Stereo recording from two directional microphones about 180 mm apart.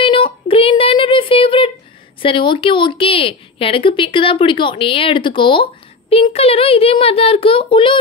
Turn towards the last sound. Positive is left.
turn(degrees=30)  # may be behind; listen again after turning